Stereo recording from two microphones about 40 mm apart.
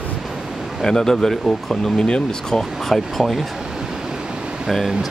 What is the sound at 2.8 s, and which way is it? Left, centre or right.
Speech, centre.